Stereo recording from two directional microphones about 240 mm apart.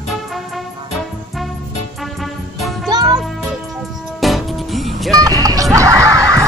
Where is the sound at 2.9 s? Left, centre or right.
Centre.